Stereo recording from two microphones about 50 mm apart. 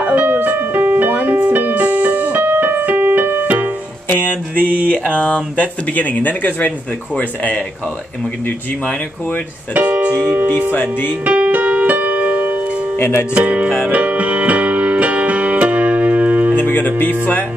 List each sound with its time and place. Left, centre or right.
0.0 s music: right
4.1 s a sound: left
7.2 s speech: left
9.8 s speech: right
10.7 s speech: left
11.2 s piano: right
12.9 s speech: left
13.3 s speech: right
13.8 s music: right
16.5 s music: left
17.0 s speech: left